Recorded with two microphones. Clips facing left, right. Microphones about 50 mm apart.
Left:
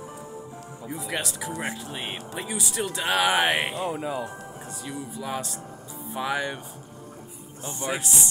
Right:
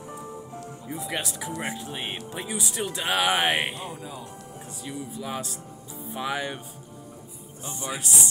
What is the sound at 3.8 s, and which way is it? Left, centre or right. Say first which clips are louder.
Speech: left 8 dB; left.